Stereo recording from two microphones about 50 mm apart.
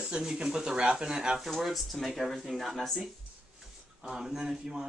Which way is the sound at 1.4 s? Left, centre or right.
Centre.